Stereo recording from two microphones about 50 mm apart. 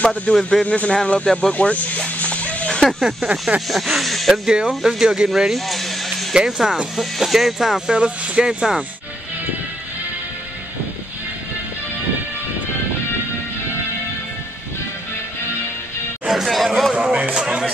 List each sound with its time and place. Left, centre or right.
0.0 s speech: left
0.3 s speech: centre
0.7 s speech: left
1.2 s speech: centre
1.5 s speech: left
3.2 s speech: centre
3.6 s speech: centre
4.5 s speech: centre
6.3 s speech: centre
7.9 s speech: centre
16.3 s chatter: centre
16.9 s speech: right